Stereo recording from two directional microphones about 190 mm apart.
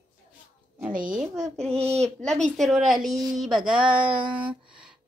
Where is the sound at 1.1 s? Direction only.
5° right (ahead or behind).